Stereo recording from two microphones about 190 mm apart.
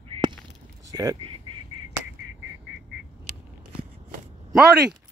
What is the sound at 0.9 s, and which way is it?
Speech, 15° right (ahead or behind).